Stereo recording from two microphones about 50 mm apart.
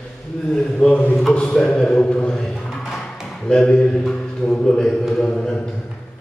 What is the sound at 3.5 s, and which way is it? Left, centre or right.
A man's voice, centre.